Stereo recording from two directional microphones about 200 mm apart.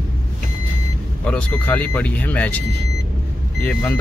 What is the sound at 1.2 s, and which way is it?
Speech, 5° left (ahead or behind).